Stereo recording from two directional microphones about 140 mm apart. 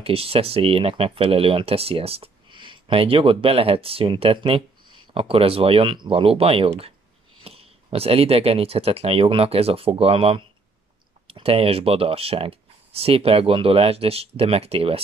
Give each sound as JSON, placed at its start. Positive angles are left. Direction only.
{"t": 0.0, "sound": "speech", "side_deg": -45}